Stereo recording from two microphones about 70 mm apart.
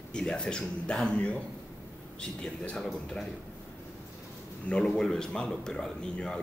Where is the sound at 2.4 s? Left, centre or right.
Centre.